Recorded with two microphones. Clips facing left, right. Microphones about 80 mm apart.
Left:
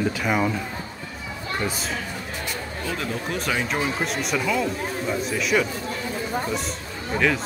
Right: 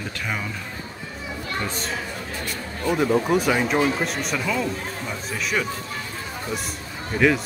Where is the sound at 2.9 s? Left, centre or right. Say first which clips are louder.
Right 10 dB; centre.